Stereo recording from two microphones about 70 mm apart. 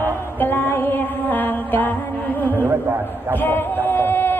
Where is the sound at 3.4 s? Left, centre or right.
Left.